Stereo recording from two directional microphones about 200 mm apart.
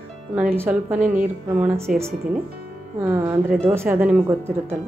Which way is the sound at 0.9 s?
40° right (ahead or behind).